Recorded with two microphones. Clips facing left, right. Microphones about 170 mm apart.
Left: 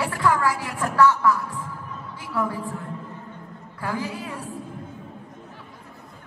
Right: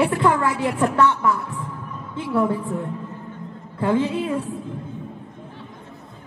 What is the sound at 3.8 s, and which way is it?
Speech, 25° right (ahead or behind).